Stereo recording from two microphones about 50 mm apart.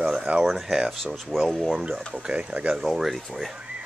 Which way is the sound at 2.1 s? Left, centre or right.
Centre.